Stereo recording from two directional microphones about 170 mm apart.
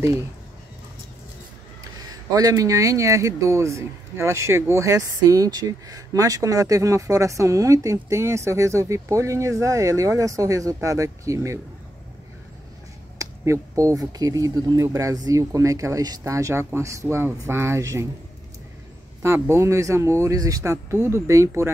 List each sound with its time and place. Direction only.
2.0 s speech: 20° right (ahead or behind)
13.2 s speech: 20° right (ahead or behind)
19.2 s speech: 15° right (ahead or behind)